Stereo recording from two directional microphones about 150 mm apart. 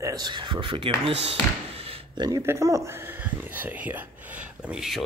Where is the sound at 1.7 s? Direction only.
40° right (ahead or behind).